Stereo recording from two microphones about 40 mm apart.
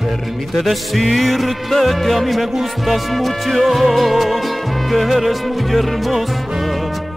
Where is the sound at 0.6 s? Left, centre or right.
Centre.